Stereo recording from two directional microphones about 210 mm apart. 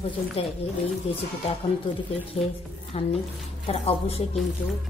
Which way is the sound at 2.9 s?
30° left (ahead or behind).